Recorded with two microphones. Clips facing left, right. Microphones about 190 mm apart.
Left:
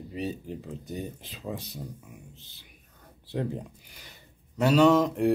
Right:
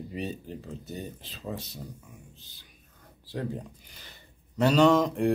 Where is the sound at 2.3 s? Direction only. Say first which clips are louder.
Left 2 dB; 25° left (ahead or behind).